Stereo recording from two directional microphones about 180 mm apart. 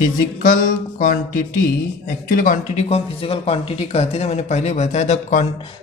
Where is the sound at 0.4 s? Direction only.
50° left (ahead or behind).